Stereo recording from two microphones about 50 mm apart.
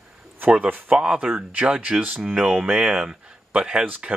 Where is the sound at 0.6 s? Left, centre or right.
Right.